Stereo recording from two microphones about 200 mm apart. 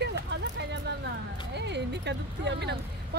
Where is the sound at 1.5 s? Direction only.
60° right (ahead or behind).